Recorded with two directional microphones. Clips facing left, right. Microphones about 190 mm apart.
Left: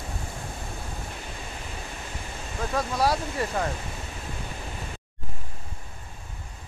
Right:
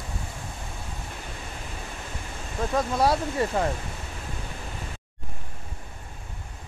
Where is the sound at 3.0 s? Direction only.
25° right (ahead or behind).